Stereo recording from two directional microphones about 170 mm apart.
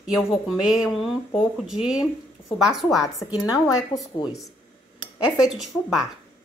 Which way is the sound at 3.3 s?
25° left (ahead or behind).